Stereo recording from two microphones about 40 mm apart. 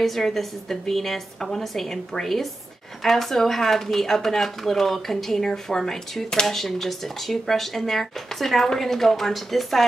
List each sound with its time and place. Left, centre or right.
0.0 s speech: centre